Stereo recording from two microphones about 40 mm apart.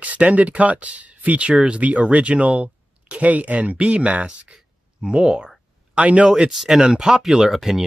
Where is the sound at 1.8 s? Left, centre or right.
Right.